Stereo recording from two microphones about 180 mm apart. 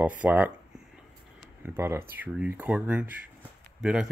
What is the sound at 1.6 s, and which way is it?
Speech, 15° right (ahead or behind).